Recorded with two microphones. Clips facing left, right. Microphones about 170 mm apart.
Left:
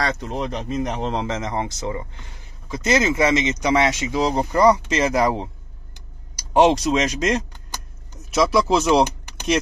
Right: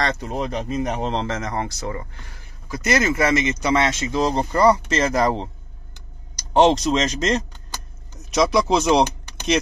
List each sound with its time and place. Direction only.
0.0 s speech: centre (ahead or behind)
1.2 s speech: 20° left (ahead or behind)
5.9 s vehicle: 10° left (ahead or behind)
8.4 s speech: 5° left (ahead or behind)
8.9 s a sound: 5° left (ahead or behind)